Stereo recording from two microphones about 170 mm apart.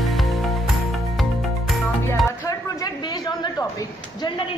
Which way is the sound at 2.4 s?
25° left (ahead or behind).